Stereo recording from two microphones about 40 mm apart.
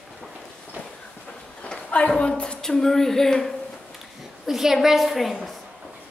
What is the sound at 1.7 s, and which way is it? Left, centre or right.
A woman's voice, left.